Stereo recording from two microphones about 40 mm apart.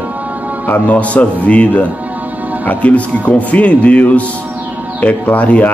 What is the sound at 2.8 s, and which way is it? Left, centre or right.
Speech, left.